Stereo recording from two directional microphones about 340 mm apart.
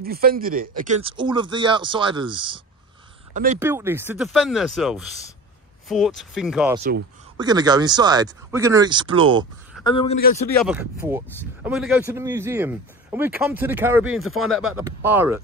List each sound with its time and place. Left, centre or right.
0.0 s speech: right
9.8 s a man's voice: centre
10.5 s speech: centre